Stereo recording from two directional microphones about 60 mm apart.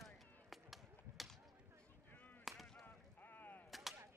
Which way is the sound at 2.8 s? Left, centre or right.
Left.